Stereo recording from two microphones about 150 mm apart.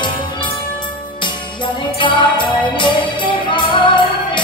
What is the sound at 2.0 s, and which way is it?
Music, 30° left (ahead or behind).